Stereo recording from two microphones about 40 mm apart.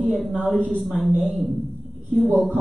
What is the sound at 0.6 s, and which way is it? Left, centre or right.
Speech, left.